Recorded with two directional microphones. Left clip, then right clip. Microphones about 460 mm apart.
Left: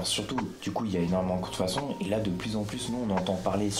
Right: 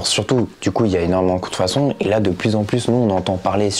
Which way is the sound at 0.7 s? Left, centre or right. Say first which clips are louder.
Right 14 dB; right.